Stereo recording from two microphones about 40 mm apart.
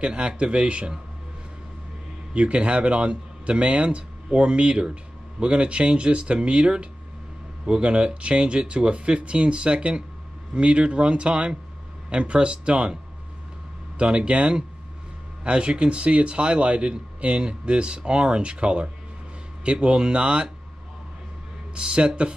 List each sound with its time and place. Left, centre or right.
0.0 s a man's voice: right
2.3 s a man's voice: right
13.9 s a man's voice: right
21.7 s a man's voice: right